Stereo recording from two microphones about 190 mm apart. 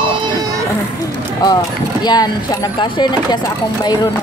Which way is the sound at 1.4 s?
20° left (ahead or behind).